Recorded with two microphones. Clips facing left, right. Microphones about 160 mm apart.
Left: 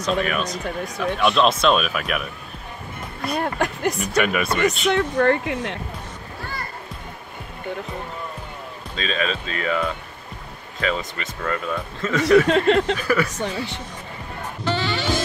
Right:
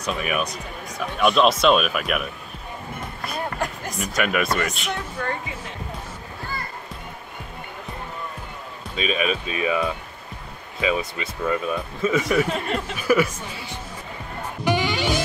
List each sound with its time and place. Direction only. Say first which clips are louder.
0.0 s speech: left 3 dB; 10° right (ahead or behind)
3.3 s speech: left 4 dB; 70° left (ahead or behind)
4.0 s speech: right 1 dB; centre (ahead or behind)
4.9 s speech: left 10 dB; 70° left (ahead or behind)
8.9 s speech: right 2 dB; 10° right (ahead or behind)
12.4 s speech: left 9 dB; 75° left (ahead or behind)
12.9 s speech: right 1 dB; 10° right (ahead or behind)
14.6 s music: right 2 dB; 15° right (ahead or behind)